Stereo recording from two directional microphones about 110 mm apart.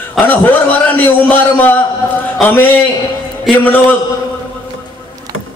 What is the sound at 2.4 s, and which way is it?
A man's voice, 15° left (ahead or behind).